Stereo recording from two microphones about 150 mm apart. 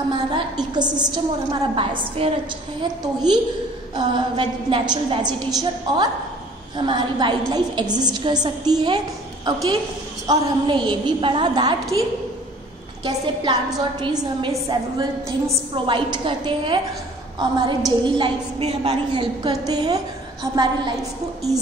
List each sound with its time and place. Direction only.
0.1 s a woman's voice: 30° right (ahead or behind)
3.0 s a woman's voice: 25° right (ahead or behind)
13.0 s a woman's voice: 30° right (ahead or behind)